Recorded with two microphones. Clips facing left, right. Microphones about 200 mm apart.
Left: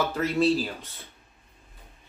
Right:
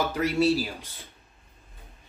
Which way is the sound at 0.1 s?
10° right (ahead or behind).